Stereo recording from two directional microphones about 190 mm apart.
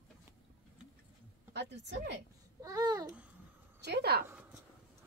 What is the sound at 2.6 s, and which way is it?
Babbling, 20° right (ahead or behind).